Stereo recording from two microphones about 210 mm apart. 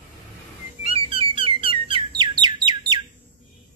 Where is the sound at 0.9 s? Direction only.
25° right (ahead or behind).